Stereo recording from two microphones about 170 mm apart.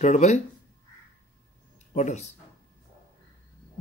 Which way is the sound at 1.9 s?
45° left (ahead or behind).